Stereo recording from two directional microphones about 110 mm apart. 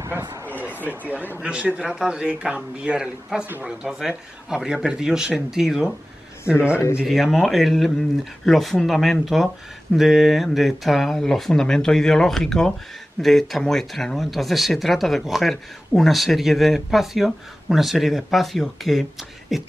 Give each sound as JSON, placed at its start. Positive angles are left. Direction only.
{"t": 1.3, "sound": "a man's voice", "side_deg": -10}
{"t": 3.8, "sound": "speech", "side_deg": -5}
{"t": 7.0, "sound": "speech", "side_deg": 0}